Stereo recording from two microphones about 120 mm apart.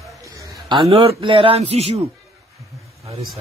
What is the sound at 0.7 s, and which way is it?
Speech, 50° right (ahead or behind).